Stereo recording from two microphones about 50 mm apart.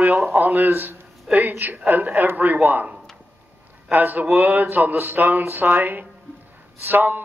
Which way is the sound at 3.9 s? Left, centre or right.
Right.